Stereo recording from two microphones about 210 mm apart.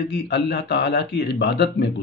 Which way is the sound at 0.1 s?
50° left (ahead or behind).